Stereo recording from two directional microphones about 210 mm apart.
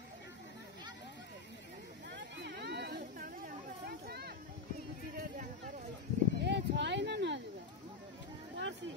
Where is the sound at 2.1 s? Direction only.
55° right (ahead or behind).